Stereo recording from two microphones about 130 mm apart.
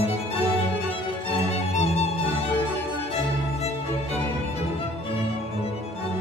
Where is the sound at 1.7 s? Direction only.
55° left (ahead or behind).